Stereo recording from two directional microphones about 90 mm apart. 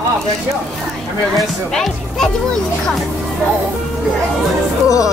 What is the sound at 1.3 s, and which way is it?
Speech, 5° left (ahead or behind).